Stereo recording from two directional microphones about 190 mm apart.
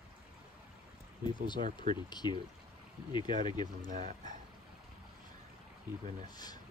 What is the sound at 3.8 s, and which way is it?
Speech, 45° right (ahead or behind).